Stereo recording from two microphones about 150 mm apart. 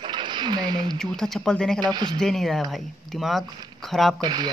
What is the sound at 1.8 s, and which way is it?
Speech, 30° right (ahead or behind).